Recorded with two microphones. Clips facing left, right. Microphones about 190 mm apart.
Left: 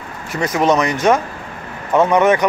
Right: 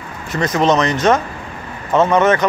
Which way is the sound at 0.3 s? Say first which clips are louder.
Right 1 dB; 10° left (ahead or behind).